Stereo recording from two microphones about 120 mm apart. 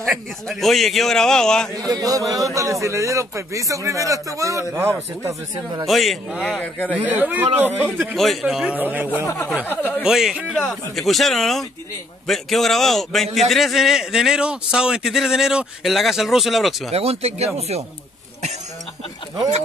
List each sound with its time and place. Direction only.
0.0 s a man's voice: centre (ahead or behind)
1.9 s a man's voice: 30° right (ahead or behind)
5.9 s a man's voice: centre (ahead or behind)
6.9 s a man's voice: 15° right (ahead or behind)
8.2 s a man's voice: centre (ahead or behind)
8.7 s a man's voice: 15° right (ahead or behind)
9.7 s speech: 15° left (ahead or behind)
10.0 s a man's voice: 5° right (ahead or behind)
16.9 s speech: 60° right (ahead or behind)